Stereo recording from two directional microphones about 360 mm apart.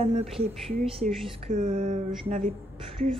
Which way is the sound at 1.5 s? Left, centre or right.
Right.